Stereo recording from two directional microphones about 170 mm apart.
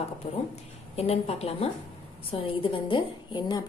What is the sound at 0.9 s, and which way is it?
A woman's voice, 35° left (ahead or behind).